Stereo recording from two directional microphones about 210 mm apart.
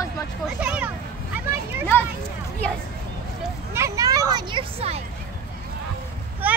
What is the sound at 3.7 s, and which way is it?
Speech, 15° right (ahead or behind).